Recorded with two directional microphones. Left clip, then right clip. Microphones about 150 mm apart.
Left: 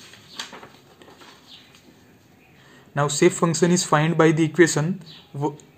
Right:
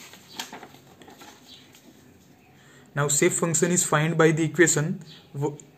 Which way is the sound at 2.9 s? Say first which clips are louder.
Left 4 dB; 25° left (ahead or behind).